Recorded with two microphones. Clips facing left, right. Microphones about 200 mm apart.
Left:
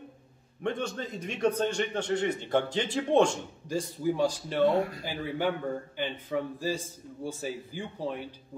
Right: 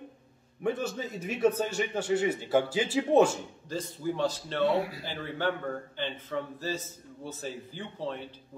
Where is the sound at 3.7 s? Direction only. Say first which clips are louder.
Left 4 dB; 10° left (ahead or behind).